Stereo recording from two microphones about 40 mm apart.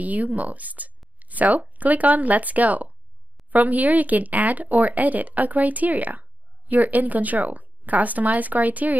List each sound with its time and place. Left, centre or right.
0.0 s speech: right